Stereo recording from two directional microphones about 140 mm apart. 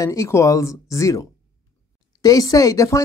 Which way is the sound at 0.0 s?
25° left (ahead or behind).